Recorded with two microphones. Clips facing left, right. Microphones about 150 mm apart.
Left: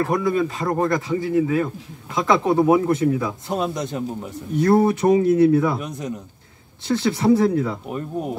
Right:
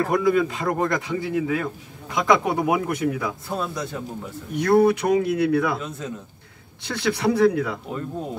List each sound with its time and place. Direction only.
0.1 s speech: 25° left (ahead or behind)
2.2 s speech: 15° right (ahead or behind)
2.7 s speech: 25° left (ahead or behind)
5.2 s speech: 75° right (ahead or behind)
5.6 s speech: 15° left (ahead or behind)